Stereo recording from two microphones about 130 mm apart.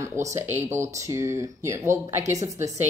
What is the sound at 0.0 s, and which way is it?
Speech, 25° right (ahead or behind).